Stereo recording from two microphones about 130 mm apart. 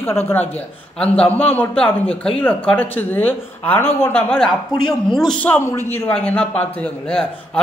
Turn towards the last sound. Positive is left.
turn(degrees=5)  # may be behind; listen again after turning